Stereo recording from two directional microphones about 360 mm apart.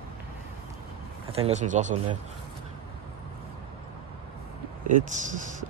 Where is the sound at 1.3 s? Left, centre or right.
Centre.